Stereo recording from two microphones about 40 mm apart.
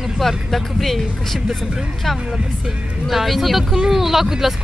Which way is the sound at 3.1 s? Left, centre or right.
Centre.